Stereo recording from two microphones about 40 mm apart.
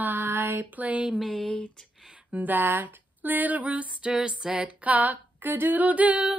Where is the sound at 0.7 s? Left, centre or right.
Right.